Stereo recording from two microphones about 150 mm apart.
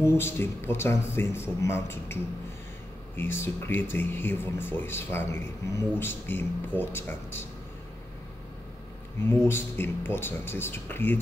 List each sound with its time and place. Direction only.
0.0 s speech: 15° left (ahead or behind)
3.2 s speech: 15° left (ahead or behind)
9.2 s speech: 15° left (ahead or behind)